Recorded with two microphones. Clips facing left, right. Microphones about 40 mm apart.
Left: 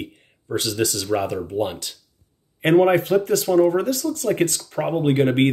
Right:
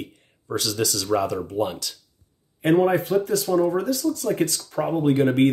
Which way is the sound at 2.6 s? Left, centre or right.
Left.